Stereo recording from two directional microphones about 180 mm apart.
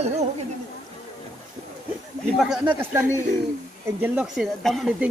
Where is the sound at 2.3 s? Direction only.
5° right (ahead or behind).